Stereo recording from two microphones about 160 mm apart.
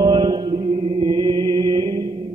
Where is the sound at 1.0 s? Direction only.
35° right (ahead or behind).